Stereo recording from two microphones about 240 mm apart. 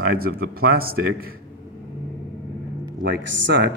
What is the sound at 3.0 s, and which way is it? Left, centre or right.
Speech, right.